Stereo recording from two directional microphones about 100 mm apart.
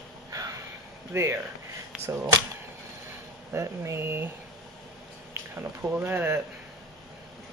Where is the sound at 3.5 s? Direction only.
25° right (ahead or behind).